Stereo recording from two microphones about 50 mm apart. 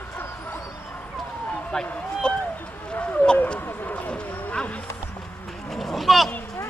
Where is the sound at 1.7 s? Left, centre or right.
Centre.